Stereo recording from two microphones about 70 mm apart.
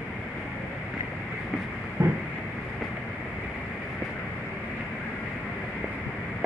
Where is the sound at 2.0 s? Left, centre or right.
Right.